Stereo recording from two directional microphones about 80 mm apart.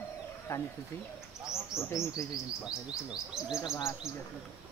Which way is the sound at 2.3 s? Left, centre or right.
Centre.